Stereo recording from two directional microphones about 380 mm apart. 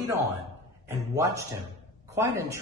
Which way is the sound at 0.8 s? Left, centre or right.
Centre.